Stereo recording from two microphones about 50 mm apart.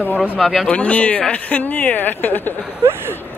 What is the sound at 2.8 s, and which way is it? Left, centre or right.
Speech, right.